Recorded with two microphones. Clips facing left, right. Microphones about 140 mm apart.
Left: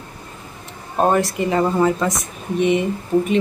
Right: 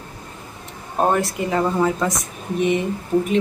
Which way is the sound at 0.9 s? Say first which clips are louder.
Left 2 dB; centre (ahead or behind).